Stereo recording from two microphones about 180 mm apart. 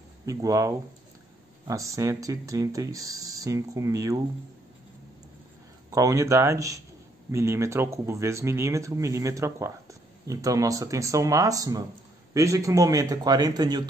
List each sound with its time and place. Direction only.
0.2 s speech: 15° right (ahead or behind)
5.9 s speech: 20° right (ahead or behind)